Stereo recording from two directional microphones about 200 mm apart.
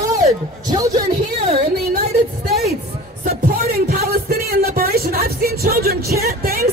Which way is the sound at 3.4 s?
50° right (ahead or behind).